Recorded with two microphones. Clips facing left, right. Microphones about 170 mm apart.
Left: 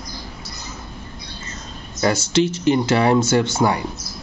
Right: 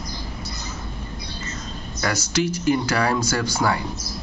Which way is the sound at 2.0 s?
25° left (ahead or behind).